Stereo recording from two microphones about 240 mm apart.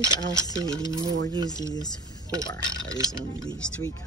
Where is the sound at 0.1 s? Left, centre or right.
Centre.